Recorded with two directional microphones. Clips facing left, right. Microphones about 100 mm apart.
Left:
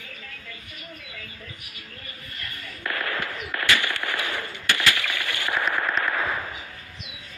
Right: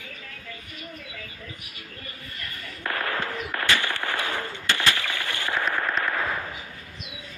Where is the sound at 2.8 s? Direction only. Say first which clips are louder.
Right 1 dB; 40° right (ahead or behind).